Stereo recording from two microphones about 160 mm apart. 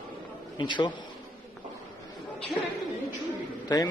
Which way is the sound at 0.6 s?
30° left (ahead or behind).